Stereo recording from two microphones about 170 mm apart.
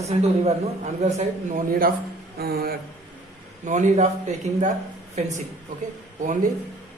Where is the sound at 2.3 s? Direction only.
65° right (ahead or behind).